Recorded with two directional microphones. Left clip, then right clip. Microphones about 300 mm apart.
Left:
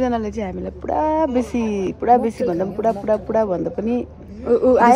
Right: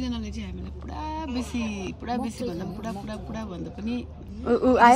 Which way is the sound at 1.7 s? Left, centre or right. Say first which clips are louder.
Left 12 dB; centre.